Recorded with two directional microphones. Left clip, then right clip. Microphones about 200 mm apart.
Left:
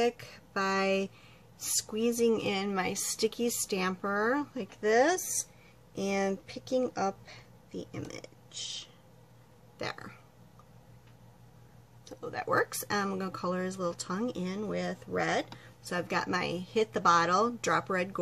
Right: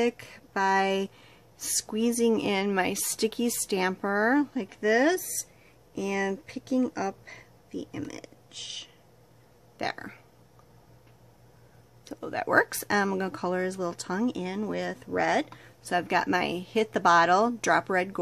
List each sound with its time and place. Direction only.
0.0 s speech: 45° right (ahead or behind)
12.1 s speech: 50° right (ahead or behind)